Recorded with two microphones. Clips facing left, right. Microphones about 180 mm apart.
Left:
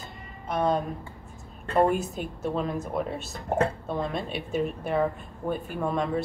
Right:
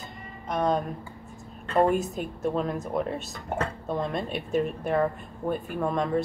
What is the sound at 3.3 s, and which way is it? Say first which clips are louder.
Speech: left 5 dB; 30° left (ahead or behind).